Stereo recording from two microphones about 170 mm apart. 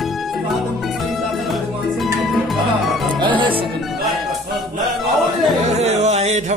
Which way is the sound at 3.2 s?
30° right (ahead or behind).